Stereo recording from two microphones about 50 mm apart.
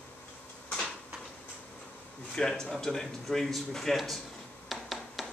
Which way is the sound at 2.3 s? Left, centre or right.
Centre.